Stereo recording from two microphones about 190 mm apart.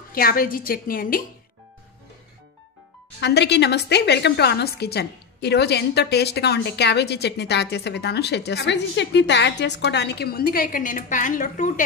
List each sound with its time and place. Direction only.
0.1 s a woman's voice: 50° left (ahead or behind)
3.2 s a woman's voice: 60° left (ahead or behind); by 11.8 s 40° left (ahead or behind)